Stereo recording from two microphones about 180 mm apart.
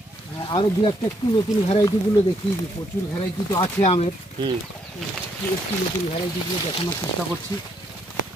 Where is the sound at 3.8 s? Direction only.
35° left (ahead or behind).